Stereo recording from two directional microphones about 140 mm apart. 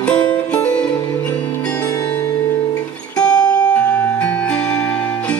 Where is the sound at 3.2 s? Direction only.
5° left (ahead or behind).